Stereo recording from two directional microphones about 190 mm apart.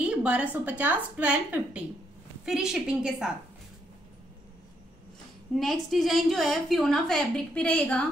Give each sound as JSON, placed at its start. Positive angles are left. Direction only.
{"t": 0.0, "sound": "a woman's voice", "side_deg": -5}
{"t": 5.6, "sound": "a woman's voice", "side_deg": 0}